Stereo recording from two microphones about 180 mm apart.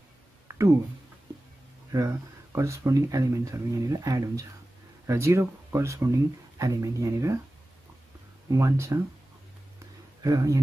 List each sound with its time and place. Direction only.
0.5 s a sound: 15° right (ahead or behind)
1.9 s speech: 15° right (ahead or behind)
8.5 s speech: 15° right (ahead or behind)
10.2 s speech: 20° right (ahead or behind)